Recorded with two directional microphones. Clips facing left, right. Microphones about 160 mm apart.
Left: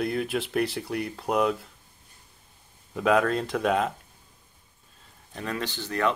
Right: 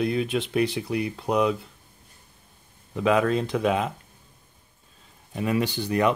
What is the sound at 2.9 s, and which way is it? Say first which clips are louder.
Speech: right 1 dB; centre (ahead or behind).